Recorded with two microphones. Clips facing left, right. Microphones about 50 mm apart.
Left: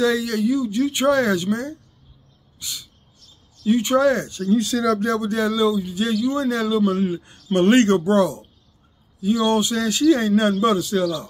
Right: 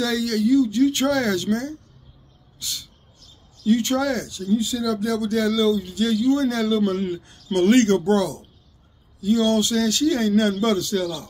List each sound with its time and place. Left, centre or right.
0.0 s speech: left
2.6 s a sound: centre
3.6 s speech: centre
4.5 s speech: left
5.0 s speech: left